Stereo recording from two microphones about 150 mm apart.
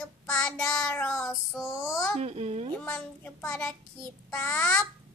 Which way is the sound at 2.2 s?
45° right (ahead or behind).